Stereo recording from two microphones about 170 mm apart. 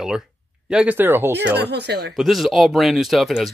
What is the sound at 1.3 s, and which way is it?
Speech, 80° right.